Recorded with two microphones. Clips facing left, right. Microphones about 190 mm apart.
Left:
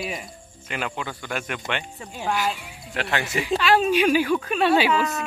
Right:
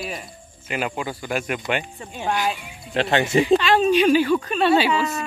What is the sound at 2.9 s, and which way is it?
Speech, 25° right (ahead or behind).